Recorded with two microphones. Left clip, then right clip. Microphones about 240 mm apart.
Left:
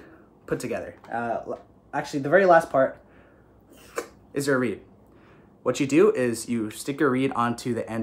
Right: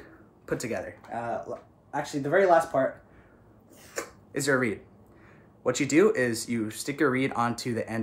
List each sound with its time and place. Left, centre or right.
0.5 s speech: centre
3.9 s a sound: centre
5.6 s speech: centre